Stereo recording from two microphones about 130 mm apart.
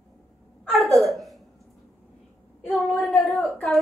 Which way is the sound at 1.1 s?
Centre (ahead or behind).